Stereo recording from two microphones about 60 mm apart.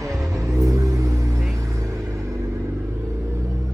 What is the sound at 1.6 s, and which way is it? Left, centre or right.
Vehicle, right.